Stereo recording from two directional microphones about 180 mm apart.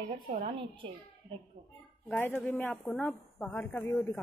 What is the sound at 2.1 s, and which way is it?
A woman's voice, 10° left (ahead or behind).